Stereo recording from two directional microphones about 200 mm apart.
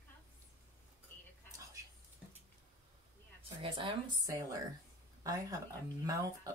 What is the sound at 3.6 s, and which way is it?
Speech, 25° right (ahead or behind).